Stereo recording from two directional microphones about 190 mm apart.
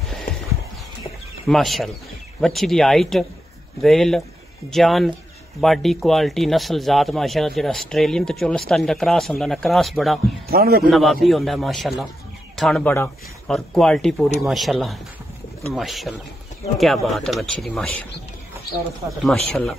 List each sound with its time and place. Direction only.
1.5 s speech: centre (ahead or behind)
10.5 s a man's voice: 50° right (ahead or behind)
10.9 s speech: centre (ahead or behind)
19.0 s speech: centre (ahead or behind)